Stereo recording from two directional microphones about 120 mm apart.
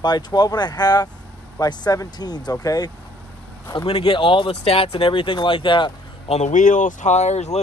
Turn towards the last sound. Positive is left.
turn(degrees=70)  # may be behind; listen again after turning